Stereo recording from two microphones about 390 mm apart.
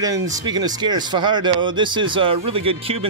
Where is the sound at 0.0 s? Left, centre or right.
Centre.